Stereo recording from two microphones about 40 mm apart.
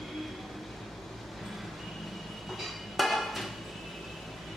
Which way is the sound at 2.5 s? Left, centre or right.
Centre.